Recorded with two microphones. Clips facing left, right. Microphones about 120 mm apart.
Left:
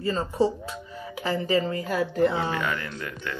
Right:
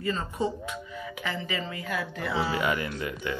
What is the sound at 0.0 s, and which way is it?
Speech, 30° left (ahead or behind).